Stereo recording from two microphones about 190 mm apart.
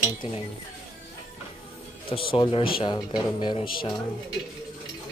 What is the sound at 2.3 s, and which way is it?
Speech, 30° left (ahead or behind).